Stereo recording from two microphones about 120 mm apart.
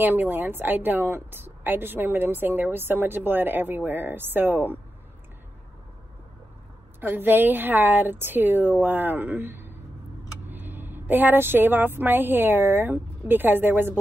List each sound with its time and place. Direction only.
0.0 s a woman's voice: 15° right (ahead or behind)
7.0 s a woman's voice: 15° right (ahead or behind)